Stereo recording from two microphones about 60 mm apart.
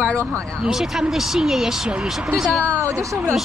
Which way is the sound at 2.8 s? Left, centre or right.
Right.